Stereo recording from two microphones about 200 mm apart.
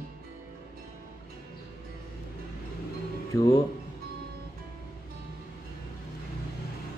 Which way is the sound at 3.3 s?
15° left (ahead or behind).